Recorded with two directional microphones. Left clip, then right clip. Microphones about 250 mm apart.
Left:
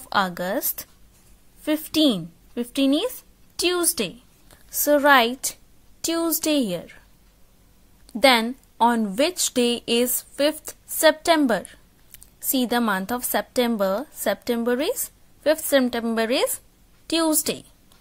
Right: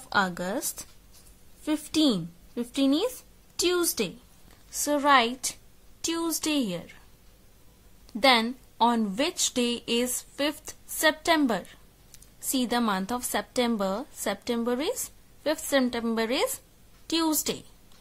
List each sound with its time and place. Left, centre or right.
0.1 s a woman's voice: centre
8.1 s a woman's voice: centre